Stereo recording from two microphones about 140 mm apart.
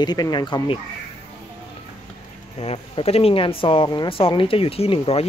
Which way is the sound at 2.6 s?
45° left (ahead or behind).